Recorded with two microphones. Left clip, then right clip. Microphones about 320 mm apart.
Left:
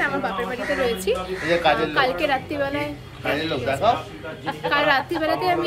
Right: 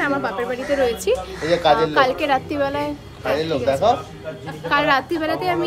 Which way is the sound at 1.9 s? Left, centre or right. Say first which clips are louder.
Right 3 dB; centre.